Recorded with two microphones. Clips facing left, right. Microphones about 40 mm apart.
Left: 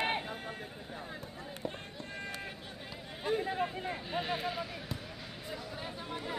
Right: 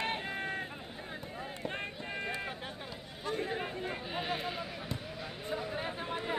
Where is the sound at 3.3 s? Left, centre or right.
Centre.